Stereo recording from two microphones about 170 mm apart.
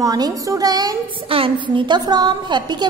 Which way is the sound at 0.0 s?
20° right (ahead or behind).